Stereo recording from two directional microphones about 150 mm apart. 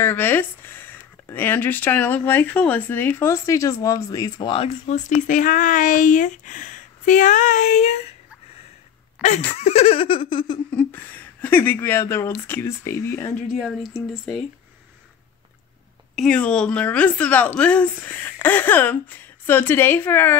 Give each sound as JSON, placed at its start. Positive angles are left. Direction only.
{"t": 0.0, "sound": "speech", "side_deg": 15}
{"t": 4.8, "sound": "speech", "side_deg": 50}
{"t": 9.2, "sound": "a sound", "side_deg": -10}
{"t": 9.6, "sound": "giggle", "side_deg": 45}
{"t": 10.7, "sound": "speech", "side_deg": 10}
{"t": 16.2, "sound": "speech", "side_deg": 5}